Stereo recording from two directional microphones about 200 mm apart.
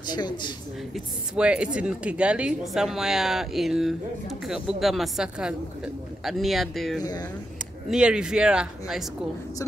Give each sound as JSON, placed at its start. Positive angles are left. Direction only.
{"t": 0.0, "sound": "speech", "side_deg": 20}
{"t": 0.9, "sound": "a woman's voice", "side_deg": -5}
{"t": 7.0, "sound": "speech", "side_deg": 20}
{"t": 7.9, "sound": "a woman's voice", "side_deg": -5}